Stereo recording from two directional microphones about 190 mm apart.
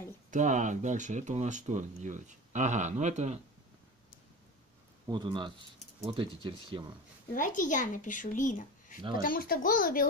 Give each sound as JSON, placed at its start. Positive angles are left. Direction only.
{"t": 0.3, "sound": "speech", "side_deg": -40}
{"t": 5.0, "sound": "speech", "side_deg": -25}
{"t": 7.3, "sound": "a child's voice", "side_deg": 45}